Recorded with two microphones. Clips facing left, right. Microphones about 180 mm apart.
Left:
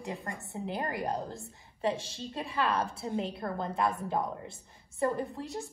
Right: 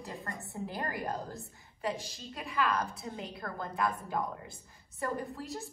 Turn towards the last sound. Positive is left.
turn(degrees=25)  # may be behind; listen again after turning